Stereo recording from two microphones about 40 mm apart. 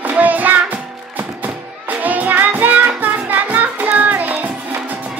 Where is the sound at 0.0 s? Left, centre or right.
Right.